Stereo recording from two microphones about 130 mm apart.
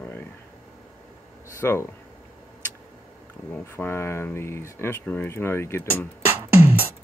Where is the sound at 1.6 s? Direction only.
20° left (ahead or behind).